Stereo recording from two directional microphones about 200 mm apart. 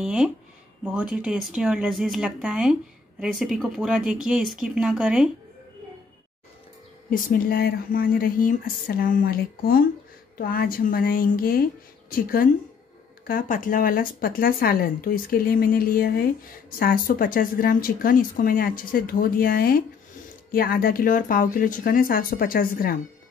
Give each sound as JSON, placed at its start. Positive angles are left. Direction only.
{"t": 0.0, "sound": "speech", "side_deg": -5}
{"t": 7.1, "sound": "a woman's voice", "side_deg": 45}